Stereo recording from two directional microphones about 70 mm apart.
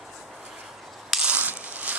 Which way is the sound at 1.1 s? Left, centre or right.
Centre.